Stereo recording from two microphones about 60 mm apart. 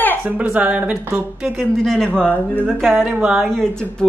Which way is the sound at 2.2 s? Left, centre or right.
Left.